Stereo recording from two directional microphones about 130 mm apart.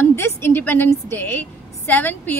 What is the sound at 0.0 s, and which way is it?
A woman's voice, 20° left (ahead or behind).